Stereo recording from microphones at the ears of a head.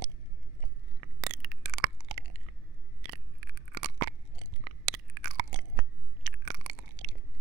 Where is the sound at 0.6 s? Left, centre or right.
Right.